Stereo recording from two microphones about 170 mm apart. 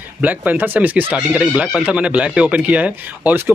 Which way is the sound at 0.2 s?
10° right (ahead or behind).